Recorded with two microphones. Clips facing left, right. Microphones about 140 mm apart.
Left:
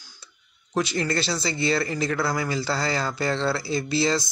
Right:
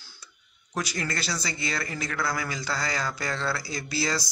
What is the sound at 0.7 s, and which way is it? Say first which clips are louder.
Speech: left 6 dB; 25° left (ahead or behind).